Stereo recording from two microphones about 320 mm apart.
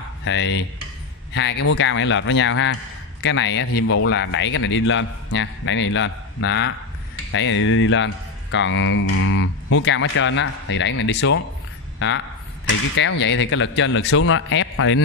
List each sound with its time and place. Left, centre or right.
0.2 s a man's voice: left
13.2 s a man's voice: left